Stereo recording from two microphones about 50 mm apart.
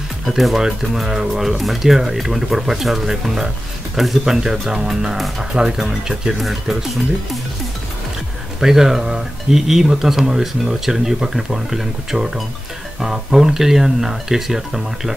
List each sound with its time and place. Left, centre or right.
0.3 s speech: centre
6.3 s speech: centre
8.5 s speech: centre